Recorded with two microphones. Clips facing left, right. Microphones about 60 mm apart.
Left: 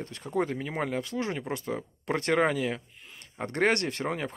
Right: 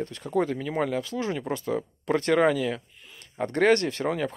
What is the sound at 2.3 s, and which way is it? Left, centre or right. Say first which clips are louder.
Speech: right 3 dB; left.